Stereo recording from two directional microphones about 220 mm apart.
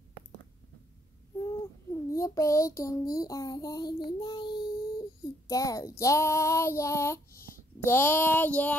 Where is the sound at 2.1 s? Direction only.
15° left (ahead or behind).